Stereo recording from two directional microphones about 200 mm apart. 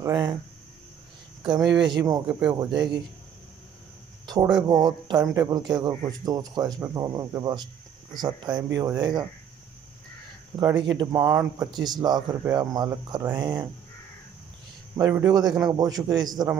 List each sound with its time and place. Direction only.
0.0 s speech: 20° right (ahead or behind)
1.4 s speech: 20° right (ahead or behind)
4.3 s speech: 20° right (ahead or behind)
10.6 s speech: 20° right (ahead or behind)
15.0 s speech: 15° right (ahead or behind)